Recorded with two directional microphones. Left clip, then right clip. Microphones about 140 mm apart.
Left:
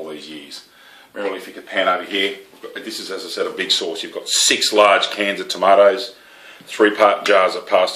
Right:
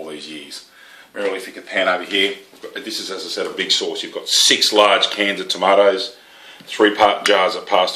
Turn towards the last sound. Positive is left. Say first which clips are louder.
# even
turn(degrees=-40)  # may be behind; listen again after turning